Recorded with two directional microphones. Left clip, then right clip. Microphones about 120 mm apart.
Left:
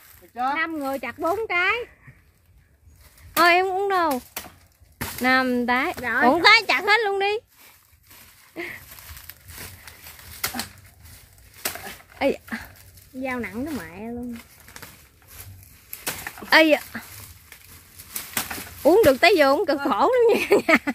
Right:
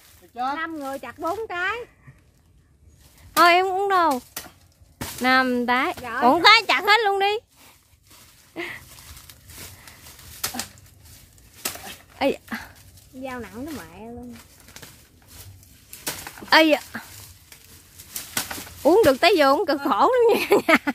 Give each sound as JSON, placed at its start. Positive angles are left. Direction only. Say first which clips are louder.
{"t": 0.7, "sound": "speech", "louder": "left 4 dB", "side_deg": 75}
{"t": 3.3, "sound": "speech", "louder": "right 1 dB", "side_deg": -15}
{"t": 8.5, "sound": "dog", "louder": "right 1 dB", "side_deg": -15}
{"t": 10.4, "sound": "bird", "louder": "left 1 dB", "side_deg": -25}
{"t": 12.2, "sound": "dog", "louder": "even", "side_deg": -15}
{"t": 13.2, "sound": "speech", "louder": "left 5 dB", "side_deg": 85}
{"t": 16.3, "sound": "speech", "louder": "even", "side_deg": -15}
{"t": 18.3, "sound": "bird", "louder": "even", "side_deg": -15}
{"t": 19.0, "sound": "speech", "louder": "left 1 dB", "side_deg": -15}